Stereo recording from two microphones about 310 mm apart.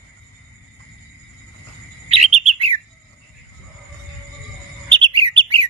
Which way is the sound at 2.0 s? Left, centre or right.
Centre.